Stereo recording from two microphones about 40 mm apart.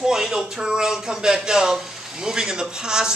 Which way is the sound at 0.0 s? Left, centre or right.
Centre.